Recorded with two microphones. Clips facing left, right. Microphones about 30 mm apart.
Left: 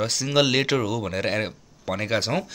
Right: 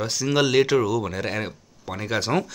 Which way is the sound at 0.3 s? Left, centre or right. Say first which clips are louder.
Even; left.